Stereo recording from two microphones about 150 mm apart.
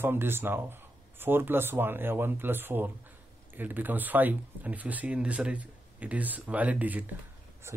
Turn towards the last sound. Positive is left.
turn(degrees=-20)  # may be behind; listen again after turning